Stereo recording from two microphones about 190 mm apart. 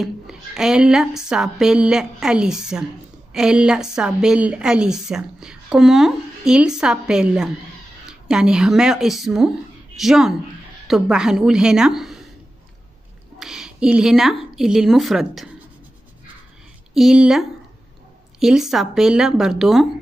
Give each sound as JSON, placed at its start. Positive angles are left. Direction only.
{"t": 0.0, "sound": "a woman's voice", "side_deg": 0}
{"t": 13.4, "sound": "a woman's voice", "side_deg": 0}
{"t": 16.9, "sound": "a woman's voice", "side_deg": -5}